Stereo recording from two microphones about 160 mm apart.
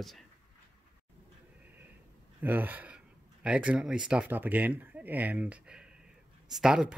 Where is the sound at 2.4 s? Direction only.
10° right (ahead or behind).